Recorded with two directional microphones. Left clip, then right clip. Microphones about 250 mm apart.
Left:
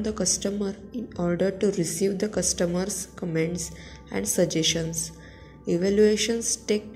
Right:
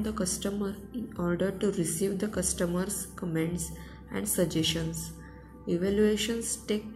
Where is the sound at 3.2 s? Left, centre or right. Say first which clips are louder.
Left 5 dB; centre.